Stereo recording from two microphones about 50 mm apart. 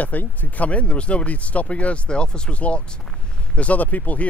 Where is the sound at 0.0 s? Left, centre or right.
Left.